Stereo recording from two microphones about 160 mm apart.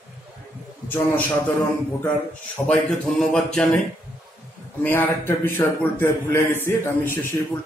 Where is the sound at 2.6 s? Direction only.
15° left (ahead or behind).